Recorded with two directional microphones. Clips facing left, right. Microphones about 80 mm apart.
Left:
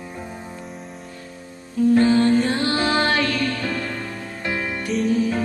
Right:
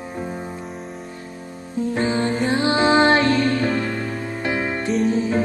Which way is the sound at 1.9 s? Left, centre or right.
Right.